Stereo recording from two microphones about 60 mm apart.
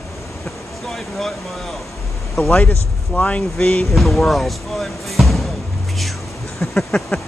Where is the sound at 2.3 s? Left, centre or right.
Centre.